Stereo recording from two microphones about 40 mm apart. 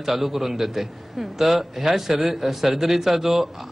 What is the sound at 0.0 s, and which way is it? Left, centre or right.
A man's voice, centre.